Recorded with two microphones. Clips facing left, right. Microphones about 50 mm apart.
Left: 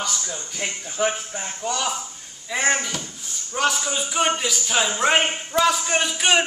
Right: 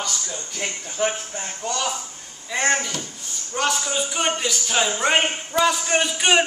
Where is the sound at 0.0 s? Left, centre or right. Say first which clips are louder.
Left 1 dB; centre.